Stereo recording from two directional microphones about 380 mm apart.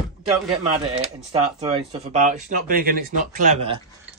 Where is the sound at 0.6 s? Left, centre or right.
Centre.